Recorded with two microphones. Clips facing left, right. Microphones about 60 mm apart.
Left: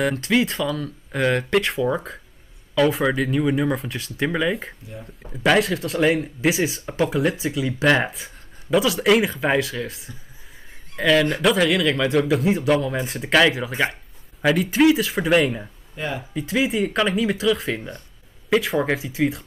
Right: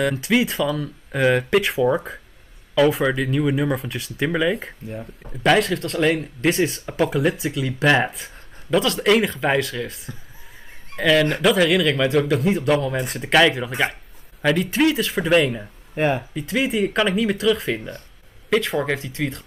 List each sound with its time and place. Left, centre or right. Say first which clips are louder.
0.0 s speech: even; centre
15.9 s speech: right 8 dB; right
16.3 s speech: even; centre